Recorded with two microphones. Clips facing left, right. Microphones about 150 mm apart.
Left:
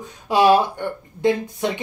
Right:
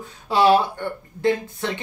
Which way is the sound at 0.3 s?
15° left (ahead or behind).